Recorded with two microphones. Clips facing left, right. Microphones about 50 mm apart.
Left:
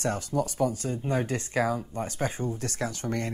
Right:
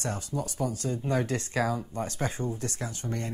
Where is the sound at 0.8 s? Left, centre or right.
Left.